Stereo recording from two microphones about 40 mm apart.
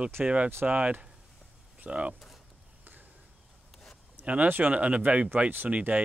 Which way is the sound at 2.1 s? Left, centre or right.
Centre.